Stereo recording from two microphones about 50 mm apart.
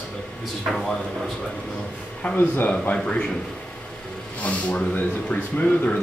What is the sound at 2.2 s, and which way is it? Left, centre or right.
Speech, left.